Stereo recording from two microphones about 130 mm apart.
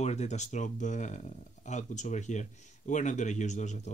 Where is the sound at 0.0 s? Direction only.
60° left (ahead or behind).